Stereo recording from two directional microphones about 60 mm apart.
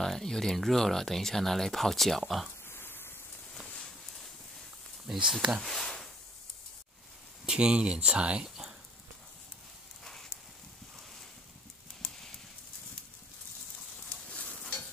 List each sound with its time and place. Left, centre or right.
0.0 s speech: centre
2.7 s a sound: left
5.0 s speech: centre
5.6 s speech: centre
7.4 s speech: centre
10.0 s a sound: centre
12.0 s clip-clop: centre